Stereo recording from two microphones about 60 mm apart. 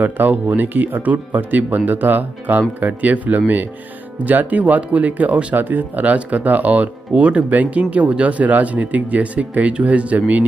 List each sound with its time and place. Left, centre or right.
0.0 s speech: right